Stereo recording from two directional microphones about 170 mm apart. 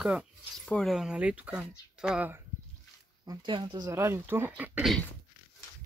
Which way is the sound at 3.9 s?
15° right (ahead or behind).